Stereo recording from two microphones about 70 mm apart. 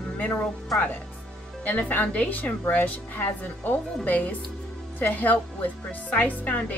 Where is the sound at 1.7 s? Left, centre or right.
Left.